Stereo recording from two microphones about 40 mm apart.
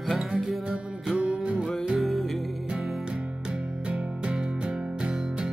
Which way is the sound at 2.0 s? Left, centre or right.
Centre.